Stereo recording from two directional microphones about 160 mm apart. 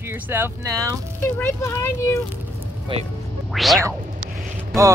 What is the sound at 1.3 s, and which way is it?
Speech, 15° left (ahead or behind).